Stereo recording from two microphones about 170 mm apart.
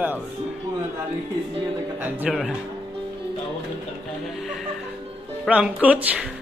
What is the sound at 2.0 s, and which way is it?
Speech, 10° right (ahead or behind).